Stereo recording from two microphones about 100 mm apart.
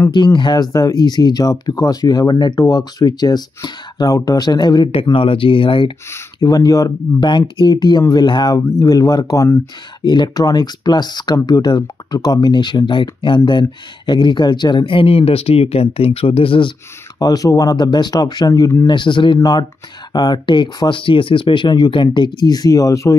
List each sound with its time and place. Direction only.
0.1 s speech: 50° left (ahead or behind)
5.1 s speech: 65° left (ahead or behind)
6.4 s speech: 40° left (ahead or behind)
7.2 s speech: 50° left (ahead or behind)
10.0 s speech: 50° left (ahead or behind)
17.2 s speech: 40° left (ahead or behind)
18.9 s speech: 55° left (ahead or behind); by 23.1 s 35° left (ahead or behind)